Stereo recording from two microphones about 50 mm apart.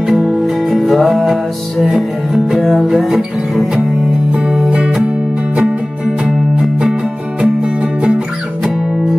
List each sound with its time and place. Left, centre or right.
0.1 s music: centre
4.3 s music: centre